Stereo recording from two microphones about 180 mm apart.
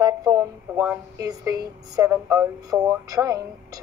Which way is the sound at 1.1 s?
20° right (ahead or behind).